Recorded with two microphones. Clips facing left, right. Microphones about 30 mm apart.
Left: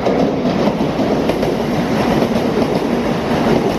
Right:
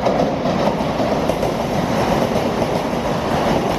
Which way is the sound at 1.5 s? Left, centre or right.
Left.